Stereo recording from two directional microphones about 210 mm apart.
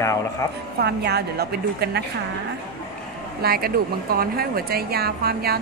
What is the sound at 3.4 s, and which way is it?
Speech, 45° right (ahead or behind).